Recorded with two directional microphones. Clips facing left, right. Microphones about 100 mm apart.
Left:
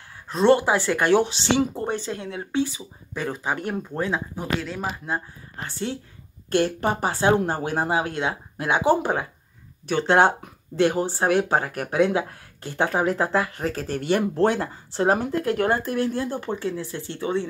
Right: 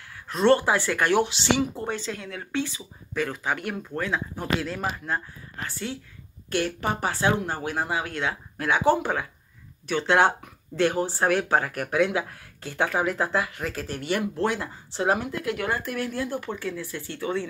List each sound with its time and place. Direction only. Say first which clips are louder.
0.3 s speech: left 2 dB; 20° left (ahead or behind)
4.6 s speech: even; centre (ahead or behind)
5.0 s speech: left 1 dB; 20° left (ahead or behind)